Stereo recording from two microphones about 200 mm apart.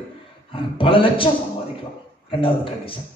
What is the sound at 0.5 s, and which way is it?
A man's voice, 25° left (ahead or behind).